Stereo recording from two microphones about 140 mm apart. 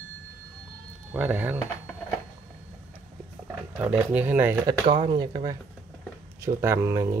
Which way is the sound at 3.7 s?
10° right (ahead or behind).